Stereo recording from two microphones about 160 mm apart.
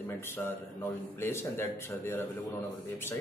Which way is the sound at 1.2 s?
15° left (ahead or behind).